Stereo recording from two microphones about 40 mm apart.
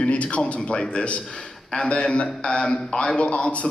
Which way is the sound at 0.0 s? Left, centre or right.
Left.